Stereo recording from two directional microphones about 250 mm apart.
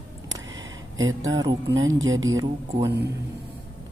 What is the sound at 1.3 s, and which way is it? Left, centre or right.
Speech, centre.